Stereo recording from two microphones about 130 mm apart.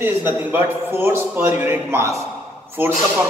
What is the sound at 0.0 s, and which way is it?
A man's voice, 15° right (ahead or behind).